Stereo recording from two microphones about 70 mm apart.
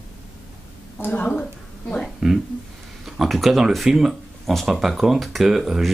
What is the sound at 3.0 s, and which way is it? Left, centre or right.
Speech, centre.